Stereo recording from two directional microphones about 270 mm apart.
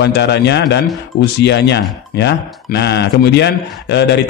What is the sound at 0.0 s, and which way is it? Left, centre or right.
A man's voice, left.